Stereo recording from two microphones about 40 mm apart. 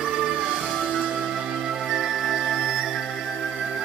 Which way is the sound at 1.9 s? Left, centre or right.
Centre.